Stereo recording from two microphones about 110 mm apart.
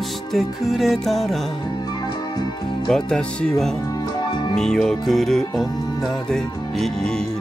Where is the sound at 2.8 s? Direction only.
5° left (ahead or behind).